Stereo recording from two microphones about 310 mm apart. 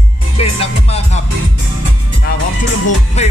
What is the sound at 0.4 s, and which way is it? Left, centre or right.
Music, centre.